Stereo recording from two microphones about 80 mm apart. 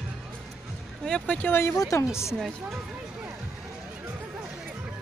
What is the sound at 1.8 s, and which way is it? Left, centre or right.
Speech, left.